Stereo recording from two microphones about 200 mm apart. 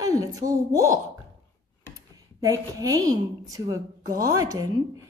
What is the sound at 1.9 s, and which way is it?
Computer keyboard, 15° right (ahead or behind).